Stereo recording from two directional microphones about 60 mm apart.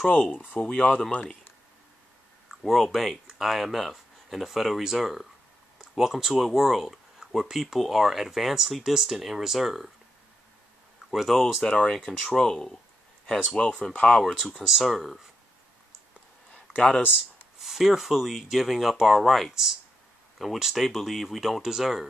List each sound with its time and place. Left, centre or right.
0.1 s speech: left
2.6 s speech: centre
11.1 s speech: centre
11.6 s speech: centre
16.5 s a sound: centre
17.1 s speech: centre